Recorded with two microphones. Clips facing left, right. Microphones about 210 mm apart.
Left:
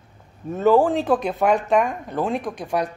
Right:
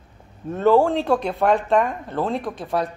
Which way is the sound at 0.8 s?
Centre (ahead or behind).